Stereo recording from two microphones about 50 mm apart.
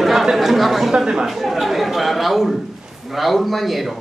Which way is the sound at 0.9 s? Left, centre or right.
Centre.